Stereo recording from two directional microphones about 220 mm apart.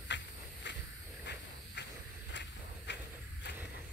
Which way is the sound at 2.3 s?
50° left (ahead or behind).